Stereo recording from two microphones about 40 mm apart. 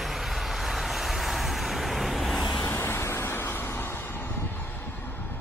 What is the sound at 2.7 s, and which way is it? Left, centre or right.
Vehicle, left.